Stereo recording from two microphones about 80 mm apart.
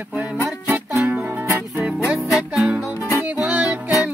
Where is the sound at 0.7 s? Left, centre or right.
Right.